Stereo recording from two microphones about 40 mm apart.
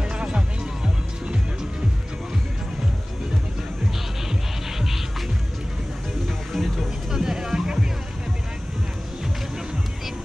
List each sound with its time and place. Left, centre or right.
0.0 s music: right
6.2 s music: centre